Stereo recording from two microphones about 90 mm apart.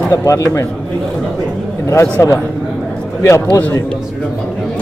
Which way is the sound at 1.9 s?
35° left (ahead or behind).